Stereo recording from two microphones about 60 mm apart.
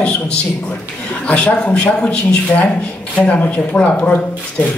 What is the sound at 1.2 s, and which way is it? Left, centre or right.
Speech, left.